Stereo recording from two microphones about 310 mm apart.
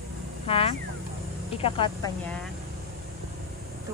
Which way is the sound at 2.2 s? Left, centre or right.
Centre.